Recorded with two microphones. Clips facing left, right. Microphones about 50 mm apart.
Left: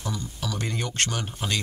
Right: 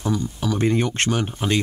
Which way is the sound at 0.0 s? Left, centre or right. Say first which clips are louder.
Right 8 dB; right.